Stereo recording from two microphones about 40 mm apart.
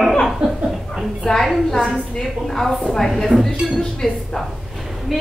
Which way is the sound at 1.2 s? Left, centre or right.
Centre.